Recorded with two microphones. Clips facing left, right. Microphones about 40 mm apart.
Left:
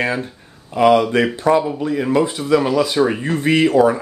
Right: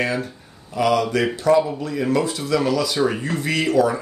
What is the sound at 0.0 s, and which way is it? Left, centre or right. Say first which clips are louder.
Speech: left 2 dB; left.